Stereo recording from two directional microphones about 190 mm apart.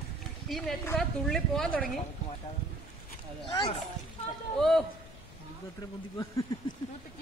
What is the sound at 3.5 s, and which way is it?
Speech, 25° left (ahead or behind).